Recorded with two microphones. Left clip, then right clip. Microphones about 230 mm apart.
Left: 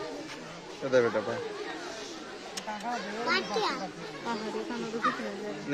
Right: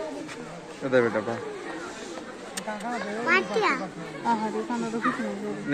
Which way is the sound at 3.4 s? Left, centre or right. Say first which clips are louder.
Right 6 dB; right.